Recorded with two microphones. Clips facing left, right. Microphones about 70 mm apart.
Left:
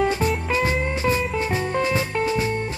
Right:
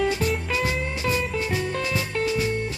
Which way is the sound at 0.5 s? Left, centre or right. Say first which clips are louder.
Left 4 dB; left.